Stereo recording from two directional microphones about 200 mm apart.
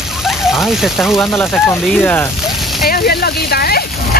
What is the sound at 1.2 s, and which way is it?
Speech, 10° left (ahead or behind).